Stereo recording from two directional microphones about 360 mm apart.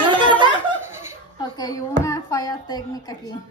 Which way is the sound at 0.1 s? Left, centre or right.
Centre.